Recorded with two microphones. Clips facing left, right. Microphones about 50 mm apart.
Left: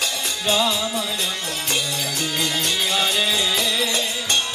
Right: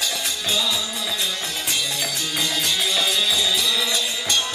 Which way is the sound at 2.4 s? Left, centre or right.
Left.